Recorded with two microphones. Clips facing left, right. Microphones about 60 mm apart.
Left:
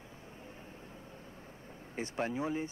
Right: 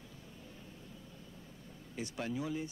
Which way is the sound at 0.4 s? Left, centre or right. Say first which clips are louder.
Left 3 dB; left.